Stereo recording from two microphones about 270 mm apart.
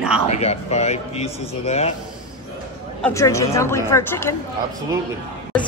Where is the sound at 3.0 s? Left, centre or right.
Centre.